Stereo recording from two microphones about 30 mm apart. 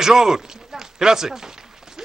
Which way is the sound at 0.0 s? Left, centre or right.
Centre.